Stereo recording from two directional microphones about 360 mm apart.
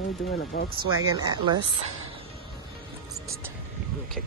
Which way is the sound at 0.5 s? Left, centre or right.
Left.